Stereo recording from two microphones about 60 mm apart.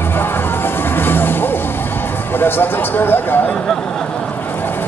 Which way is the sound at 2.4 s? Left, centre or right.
Left.